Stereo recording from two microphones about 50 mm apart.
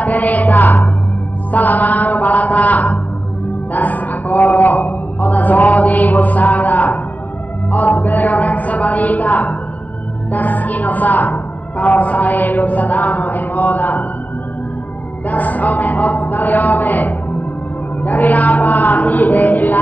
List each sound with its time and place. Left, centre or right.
0.0 s music: left
1.5 s a woman's voice: left
15.2 s a woman's voice: left